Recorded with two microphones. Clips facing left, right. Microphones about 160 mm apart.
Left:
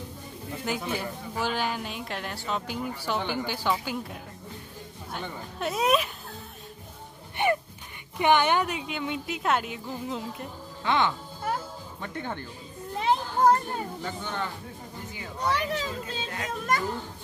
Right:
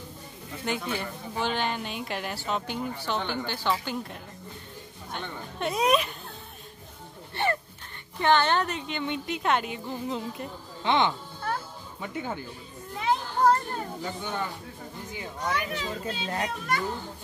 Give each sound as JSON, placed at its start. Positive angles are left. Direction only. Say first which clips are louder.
{"t": 0.7, "sound": "a woman's voice", "louder": "even", "side_deg": 5}
{"t": 7.4, "sound": "music", "louder": "left 3 dB", "side_deg": 15}
{"t": 8.2, "sound": "a woman's voice", "louder": "left 1 dB", "side_deg": 15}
{"t": 10.8, "sound": "speech", "louder": "right 1 dB", "side_deg": -20}
{"t": 12.0, "sound": "speech", "louder": "right 2 dB", "side_deg": -10}
{"t": 14.0, "sound": "speech", "louder": "right 1 dB", "side_deg": -10}
{"t": 15.5, "sound": "a child's voice", "louder": "left 1 dB", "side_deg": 40}